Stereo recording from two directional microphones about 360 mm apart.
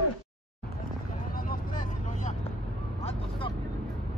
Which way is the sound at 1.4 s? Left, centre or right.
Left.